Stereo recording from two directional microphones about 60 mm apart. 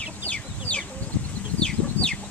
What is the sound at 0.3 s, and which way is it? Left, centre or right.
Chicken, left.